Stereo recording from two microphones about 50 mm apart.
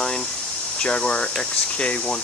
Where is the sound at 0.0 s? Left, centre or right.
Centre.